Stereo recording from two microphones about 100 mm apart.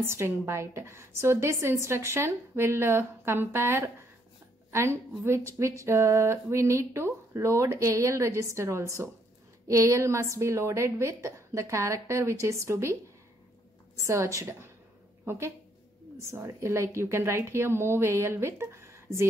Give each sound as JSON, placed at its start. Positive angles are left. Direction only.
{"t": 0.0, "sound": "a woman's voice", "side_deg": -25}
{"t": 13.9, "sound": "a woman's voice", "side_deg": -30}